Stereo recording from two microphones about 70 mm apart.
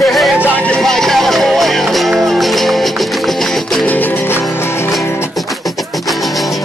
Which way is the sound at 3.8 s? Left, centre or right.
Left.